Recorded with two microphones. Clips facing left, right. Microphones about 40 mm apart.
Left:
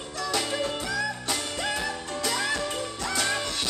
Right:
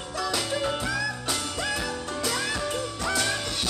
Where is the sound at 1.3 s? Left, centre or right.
Left.